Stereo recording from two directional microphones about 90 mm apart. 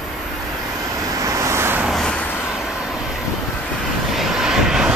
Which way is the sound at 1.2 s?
35° right (ahead or behind).